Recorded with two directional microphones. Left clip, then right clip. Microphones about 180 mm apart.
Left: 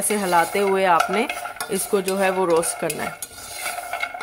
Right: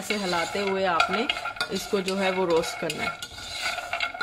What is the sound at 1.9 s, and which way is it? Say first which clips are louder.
Stir: left 6 dB; 25° left (ahead or behind).